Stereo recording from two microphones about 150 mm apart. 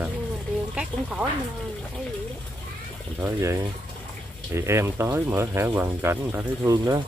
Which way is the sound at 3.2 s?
20° right (ahead or behind).